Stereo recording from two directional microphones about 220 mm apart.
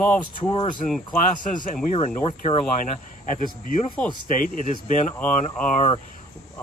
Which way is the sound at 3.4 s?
35° left (ahead or behind).